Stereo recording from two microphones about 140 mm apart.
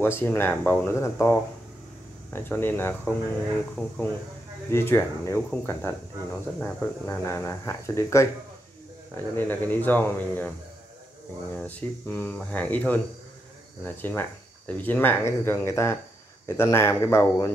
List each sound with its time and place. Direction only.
0.0 s speech: 15° left (ahead or behind)
3.7 s speech: 5° left (ahead or behind)
4.6 s speech: 15° left (ahead or behind)
11.5 s speech: 10° left (ahead or behind)
14.7 s speech: 15° left (ahead or behind)